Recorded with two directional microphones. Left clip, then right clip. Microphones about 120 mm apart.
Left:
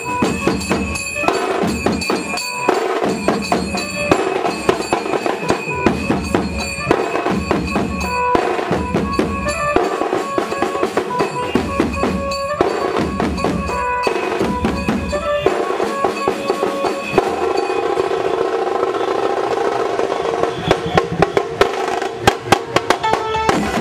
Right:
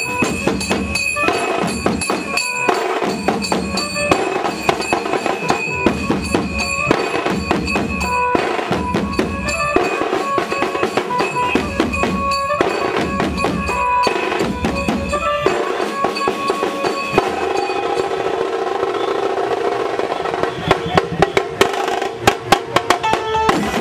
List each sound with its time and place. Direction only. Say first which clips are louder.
10.3 s drum: right 1 dB; 30° right (ahead or behind)
12.5 s music: even; 35° right (ahead or behind)
22.2 s music: even; centre (ahead or behind)